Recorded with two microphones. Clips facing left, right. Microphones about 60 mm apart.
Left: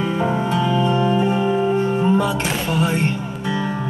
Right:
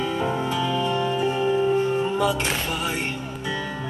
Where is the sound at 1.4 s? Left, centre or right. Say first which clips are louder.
Left 2 dB; centre.